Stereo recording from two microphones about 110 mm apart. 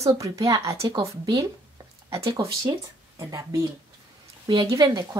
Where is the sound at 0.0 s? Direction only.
30° right (ahead or behind).